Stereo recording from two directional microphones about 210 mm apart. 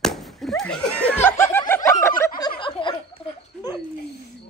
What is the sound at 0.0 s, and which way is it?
Slap, centre (ahead or behind).